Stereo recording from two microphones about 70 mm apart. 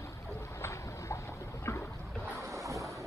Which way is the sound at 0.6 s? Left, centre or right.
Left.